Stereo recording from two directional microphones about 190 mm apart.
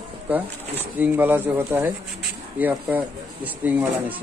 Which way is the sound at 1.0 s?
10° right (ahead or behind).